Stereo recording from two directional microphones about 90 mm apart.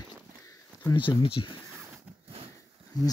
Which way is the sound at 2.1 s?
15° right (ahead or behind).